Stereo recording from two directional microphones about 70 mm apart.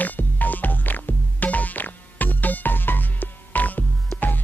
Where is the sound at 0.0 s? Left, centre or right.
Left.